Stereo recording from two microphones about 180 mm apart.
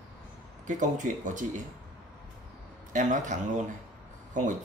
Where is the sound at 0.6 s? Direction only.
45° right (ahead or behind).